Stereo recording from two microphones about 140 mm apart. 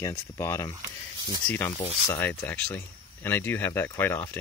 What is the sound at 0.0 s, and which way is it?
Speech, 20° left (ahead or behind).